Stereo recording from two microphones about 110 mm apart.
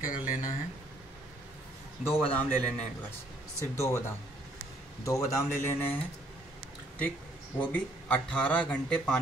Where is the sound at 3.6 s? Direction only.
25° left (ahead or behind).